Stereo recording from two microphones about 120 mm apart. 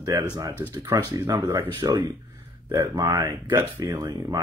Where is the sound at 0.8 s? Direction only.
35° right (ahead or behind).